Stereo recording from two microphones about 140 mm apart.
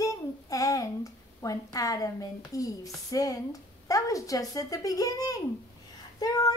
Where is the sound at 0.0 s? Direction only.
25° left (ahead or behind).